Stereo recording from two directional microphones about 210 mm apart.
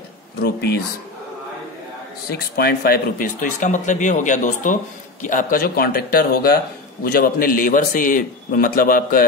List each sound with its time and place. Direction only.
0.4 s speech: 50° left (ahead or behind)
2.3 s speech: 50° left (ahead or behind)